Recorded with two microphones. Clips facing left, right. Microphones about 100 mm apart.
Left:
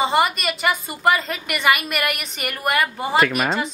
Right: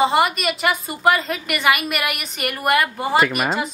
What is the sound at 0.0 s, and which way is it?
A woman's voice, centre (ahead or behind).